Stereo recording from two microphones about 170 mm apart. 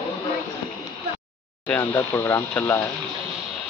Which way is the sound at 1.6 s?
10° left (ahead or behind).